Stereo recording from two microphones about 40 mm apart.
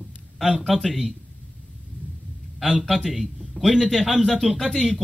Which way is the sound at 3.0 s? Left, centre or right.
Centre.